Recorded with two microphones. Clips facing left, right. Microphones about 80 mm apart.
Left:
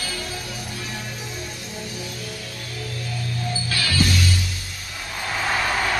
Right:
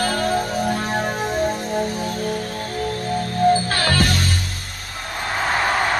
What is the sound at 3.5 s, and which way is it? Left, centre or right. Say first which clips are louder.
Music: right 8 dB; right.